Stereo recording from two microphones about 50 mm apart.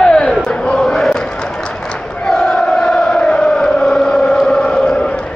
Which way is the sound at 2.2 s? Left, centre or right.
Centre.